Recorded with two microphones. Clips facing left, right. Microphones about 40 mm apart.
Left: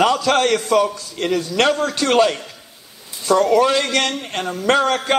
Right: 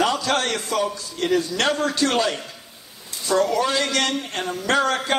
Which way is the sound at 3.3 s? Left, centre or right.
Left.